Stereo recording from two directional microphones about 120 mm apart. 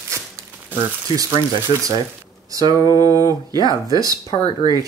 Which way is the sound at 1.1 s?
30° right (ahead or behind).